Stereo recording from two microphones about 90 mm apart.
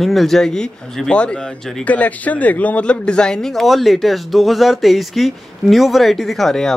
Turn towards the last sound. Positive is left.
turn(degrees=5)  # may be behind; listen again after turning